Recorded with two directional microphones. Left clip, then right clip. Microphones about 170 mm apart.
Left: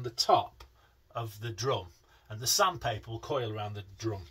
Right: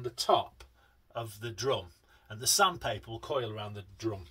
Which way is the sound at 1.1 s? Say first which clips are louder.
Even; 35° right (ahead or behind).